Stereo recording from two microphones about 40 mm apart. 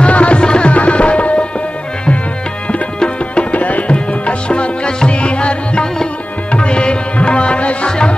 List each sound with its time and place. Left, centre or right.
0.0 s music: left
0.7 s tabla: left
2.7 s tabla: left
3.9 s music: left